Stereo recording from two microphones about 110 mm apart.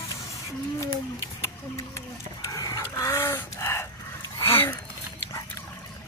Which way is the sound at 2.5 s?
30° left (ahead or behind).